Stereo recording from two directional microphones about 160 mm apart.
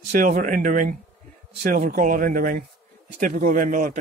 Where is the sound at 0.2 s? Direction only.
55° right (ahead or behind).